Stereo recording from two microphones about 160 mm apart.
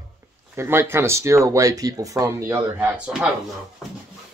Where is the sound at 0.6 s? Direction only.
15° right (ahead or behind).